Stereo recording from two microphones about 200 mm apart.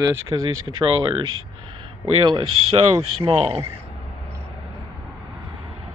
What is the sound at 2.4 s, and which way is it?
Speech, 90° right.